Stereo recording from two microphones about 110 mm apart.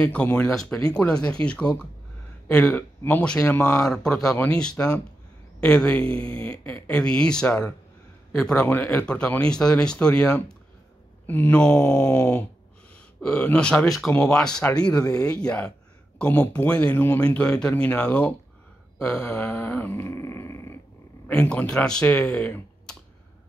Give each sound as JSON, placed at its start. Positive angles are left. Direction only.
{"t": 0.0, "sound": "speech", "side_deg": 10}
{"t": 13.2, "sound": "speech", "side_deg": 10}
{"t": 18.9, "sound": "grunt", "side_deg": 10}
{"t": 21.3, "sound": "speech", "side_deg": 10}